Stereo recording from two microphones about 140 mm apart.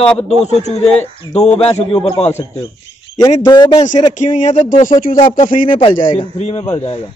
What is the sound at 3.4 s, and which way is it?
Speech, 30° left (ahead or behind).